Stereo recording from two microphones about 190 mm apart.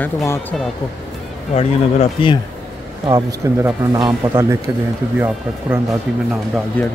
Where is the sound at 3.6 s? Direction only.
20° right (ahead or behind).